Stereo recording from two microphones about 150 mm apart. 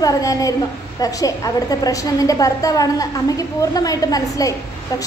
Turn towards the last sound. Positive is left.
turn(degrees=25)  # may be behind; listen again after turning